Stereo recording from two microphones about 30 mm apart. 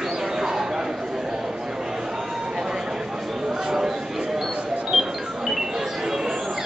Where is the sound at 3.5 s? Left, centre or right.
Centre.